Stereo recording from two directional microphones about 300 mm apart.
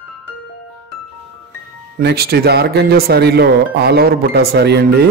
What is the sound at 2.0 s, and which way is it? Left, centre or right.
Speech, right.